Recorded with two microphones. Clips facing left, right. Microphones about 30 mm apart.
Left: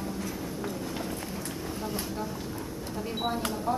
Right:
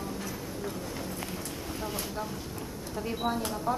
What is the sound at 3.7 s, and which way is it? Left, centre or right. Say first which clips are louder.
Speech: left 1 dB; centre.